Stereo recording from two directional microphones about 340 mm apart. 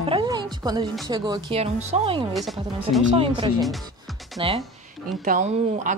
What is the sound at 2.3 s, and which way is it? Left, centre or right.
Speech, centre.